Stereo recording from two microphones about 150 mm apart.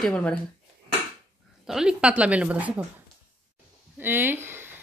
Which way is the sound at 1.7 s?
5° right (ahead or behind).